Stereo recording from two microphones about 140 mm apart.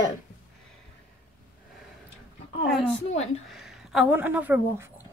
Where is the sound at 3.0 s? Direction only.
50° left (ahead or behind).